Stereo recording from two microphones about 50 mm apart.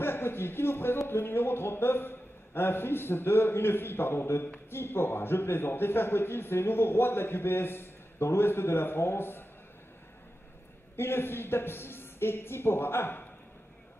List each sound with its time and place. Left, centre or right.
0.0 s a man's voice: left
11.0 s a man's voice: left